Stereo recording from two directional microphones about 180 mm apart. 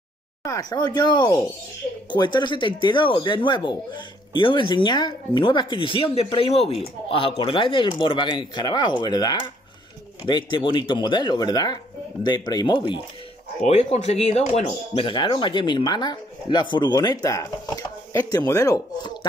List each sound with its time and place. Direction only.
0.4 s speech: 20° left (ahead or behind)